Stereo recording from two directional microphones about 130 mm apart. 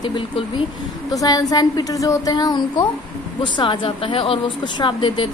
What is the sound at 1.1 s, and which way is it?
A woman's voice, 30° left (ahead or behind).